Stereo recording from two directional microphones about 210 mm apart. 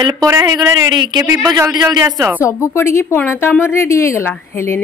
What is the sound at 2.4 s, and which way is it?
Speech, 15° left (ahead or behind).